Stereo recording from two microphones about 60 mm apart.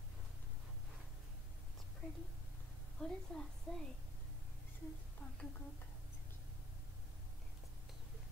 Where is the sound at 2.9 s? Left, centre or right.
Centre.